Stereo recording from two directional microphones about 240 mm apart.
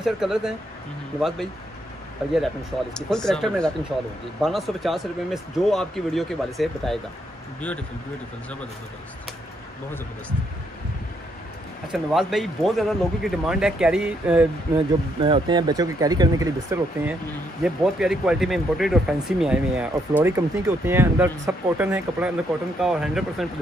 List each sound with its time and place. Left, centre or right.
0.0 s speech: centre
2.3 s speech: centre
11.9 s speech: centre
15.1 s speech: right; by 23.4 s centre